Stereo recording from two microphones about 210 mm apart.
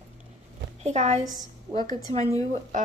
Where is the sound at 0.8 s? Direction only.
35° right (ahead or behind).